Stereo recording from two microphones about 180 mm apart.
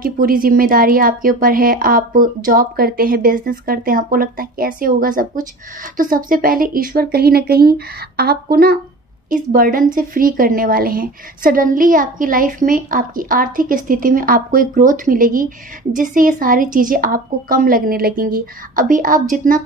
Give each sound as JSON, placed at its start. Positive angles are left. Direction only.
{"t": 0.0, "sound": "a woman's voice", "side_deg": -55}